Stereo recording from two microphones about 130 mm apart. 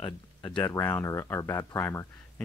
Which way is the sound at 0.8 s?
15° left (ahead or behind).